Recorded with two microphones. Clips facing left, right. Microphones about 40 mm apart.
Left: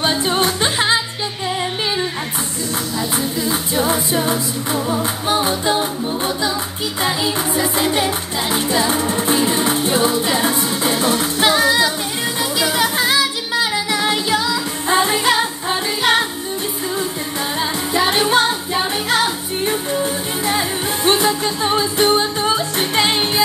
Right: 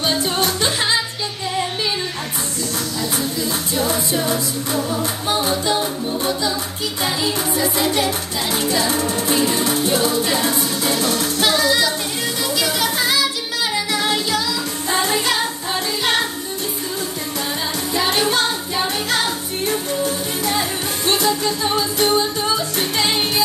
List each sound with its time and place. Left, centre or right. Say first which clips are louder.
0.0 s music: left 2 dB; left
3.0 s singing: left 1 dB; left
7.3 s music: left 1 dB; left
18.1 s music: left 3 dB; left